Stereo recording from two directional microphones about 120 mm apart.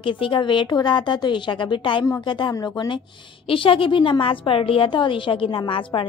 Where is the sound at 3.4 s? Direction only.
45° left (ahead or behind).